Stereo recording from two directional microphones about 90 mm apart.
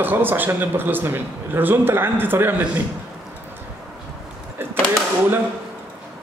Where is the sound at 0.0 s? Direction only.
20° right (ahead or behind).